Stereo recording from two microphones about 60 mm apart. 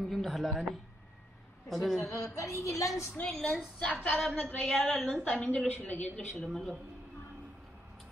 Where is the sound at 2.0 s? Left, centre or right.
Left.